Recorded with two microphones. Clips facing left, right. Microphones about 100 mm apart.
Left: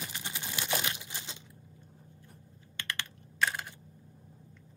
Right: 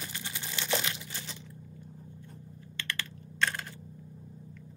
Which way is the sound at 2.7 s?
20° left (ahead or behind).